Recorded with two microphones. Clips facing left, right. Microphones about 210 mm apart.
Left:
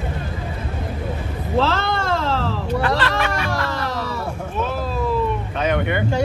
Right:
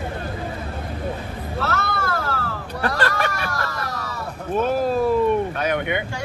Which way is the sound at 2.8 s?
45° right (ahead or behind).